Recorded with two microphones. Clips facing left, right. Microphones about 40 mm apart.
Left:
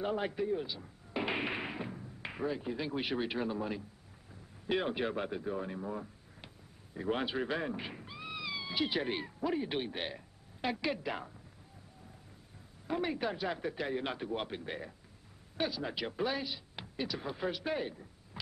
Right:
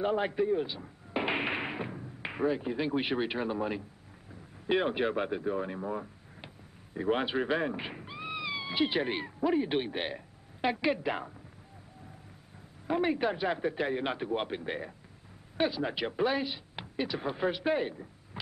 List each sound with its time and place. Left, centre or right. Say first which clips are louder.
0.0 s speech: right 5 dB; centre
12.8 s a man's voice: right 6 dB; centre